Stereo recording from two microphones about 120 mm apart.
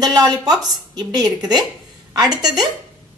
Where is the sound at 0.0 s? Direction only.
30° right (ahead or behind).